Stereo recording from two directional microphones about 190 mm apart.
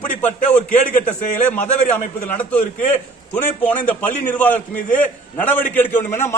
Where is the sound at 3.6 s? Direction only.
10° left (ahead or behind).